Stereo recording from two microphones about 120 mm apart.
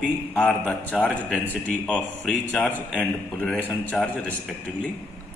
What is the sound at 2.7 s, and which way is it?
Speech, 15° right (ahead or behind).